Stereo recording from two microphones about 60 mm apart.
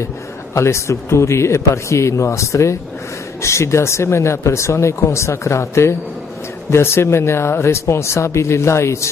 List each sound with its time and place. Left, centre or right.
0.6 s speech: left